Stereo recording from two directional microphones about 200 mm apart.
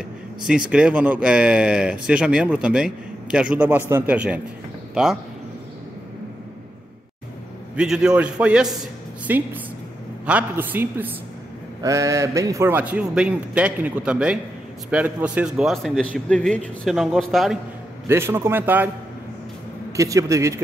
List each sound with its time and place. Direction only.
0.5 s a man's voice: 5° right (ahead or behind)
7.7 s a man's voice: 5° right (ahead or behind)
18.0 s a man's voice: 10° right (ahead or behind)
20.0 s a man's voice: 15° right (ahead or behind)